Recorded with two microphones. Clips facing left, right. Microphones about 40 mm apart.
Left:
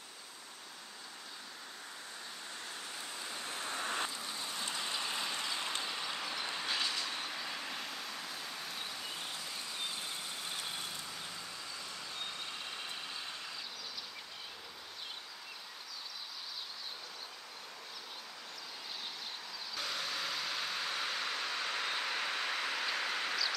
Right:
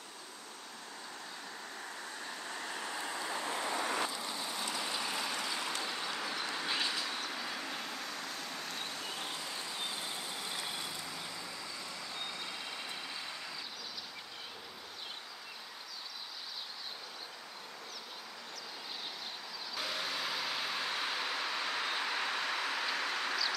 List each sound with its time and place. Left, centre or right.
2.6 s vehicle: right
3.2 s vehicle: right
3.8 s vehicle: right
4.1 s vehicle: right
4.7 s rain: centre
5.6 s vehicle: left
5.9 s vehicle: centre
6.6 s train: centre
7.2 s vehicle: centre
19.7 s vehicle: centre